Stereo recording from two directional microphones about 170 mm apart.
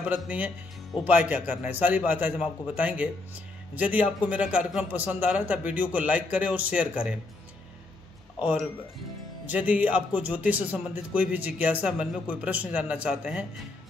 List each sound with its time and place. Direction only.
0.0 s a man's voice: 10° right (ahead or behind)
9.5 s a man's voice: 10° right (ahead or behind)